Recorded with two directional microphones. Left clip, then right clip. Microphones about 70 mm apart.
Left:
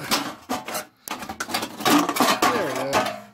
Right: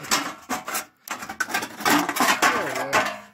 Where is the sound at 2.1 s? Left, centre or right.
Centre.